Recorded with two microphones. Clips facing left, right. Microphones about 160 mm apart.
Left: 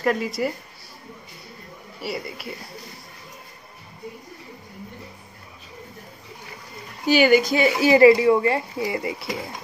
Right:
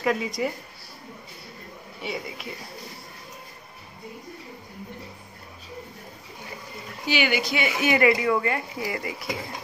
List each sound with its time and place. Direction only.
0.0 s speech: centre (ahead or behind)
2.0 s speech: 5° left (ahead or behind)
7.1 s speech: 45° left (ahead or behind); by 9.3 s 25° left (ahead or behind)